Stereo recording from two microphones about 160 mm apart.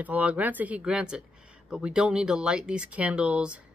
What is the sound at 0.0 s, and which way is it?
Speech, 10° right (ahead or behind).